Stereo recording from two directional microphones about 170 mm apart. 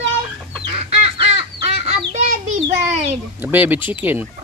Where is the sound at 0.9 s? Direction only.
35° right (ahead or behind).